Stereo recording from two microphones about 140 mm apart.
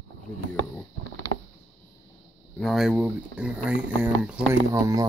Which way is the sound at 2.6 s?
Centre (ahead or behind).